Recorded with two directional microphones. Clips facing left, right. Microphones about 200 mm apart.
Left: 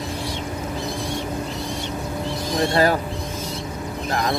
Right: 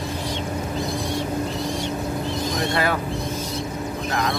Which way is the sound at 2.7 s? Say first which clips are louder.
Left 6 dB; 35° left (ahead or behind).